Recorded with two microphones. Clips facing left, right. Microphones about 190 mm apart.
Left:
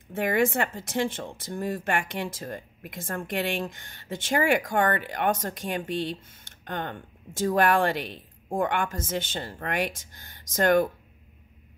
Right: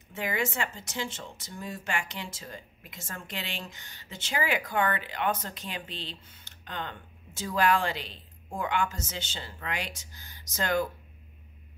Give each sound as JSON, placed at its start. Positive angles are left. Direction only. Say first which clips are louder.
{"t": 0.1, "sound": "speech", "louder": "left 8 dB", "side_deg": 55}